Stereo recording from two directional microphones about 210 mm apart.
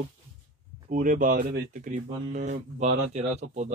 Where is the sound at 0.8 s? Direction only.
40° right (ahead or behind).